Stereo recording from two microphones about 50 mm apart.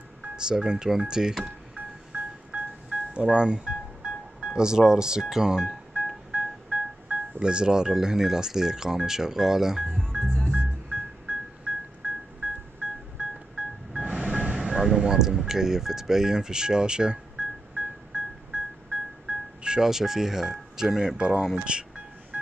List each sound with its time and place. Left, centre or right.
0.4 s speech: centre
1.4 s music: right
7.1 s speech: centre
9.8 s music: centre
10.5 s music: right
14.6 s telephone dialing: centre